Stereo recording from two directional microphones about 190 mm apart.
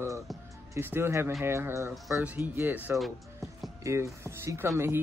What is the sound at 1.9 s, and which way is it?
Speech, 5° right (ahead or behind).